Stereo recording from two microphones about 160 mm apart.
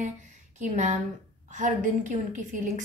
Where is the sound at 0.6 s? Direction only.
45° right (ahead or behind).